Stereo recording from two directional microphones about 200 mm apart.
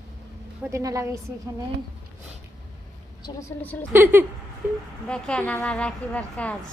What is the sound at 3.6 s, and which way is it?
Speech, 10° left (ahead or behind).